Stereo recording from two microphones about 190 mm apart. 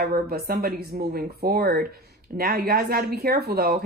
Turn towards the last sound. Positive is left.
turn(degrees=-55)  # may be behind; listen again after turning